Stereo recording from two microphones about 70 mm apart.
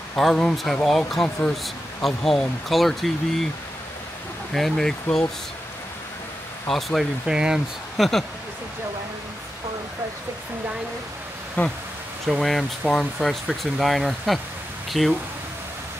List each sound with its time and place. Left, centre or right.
0.2 s speech: centre
4.6 s speech: centre
6.7 s speech: centre
7.2 s speech: centre
8.0 s speech: centre
11.6 s speech: left
12.3 s speech: centre
12.8 s speech: centre
13.2 s speech: centre